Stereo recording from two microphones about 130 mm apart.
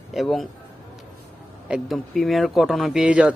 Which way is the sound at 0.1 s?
Centre (ahead or behind).